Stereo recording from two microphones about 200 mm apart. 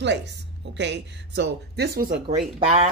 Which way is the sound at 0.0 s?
60° right (ahead or behind).